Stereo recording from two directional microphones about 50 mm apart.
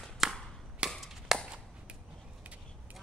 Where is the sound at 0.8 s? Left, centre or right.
Centre.